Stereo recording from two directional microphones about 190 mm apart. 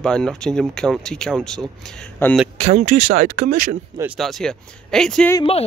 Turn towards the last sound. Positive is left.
turn(degrees=30)  # may be behind; listen again after turning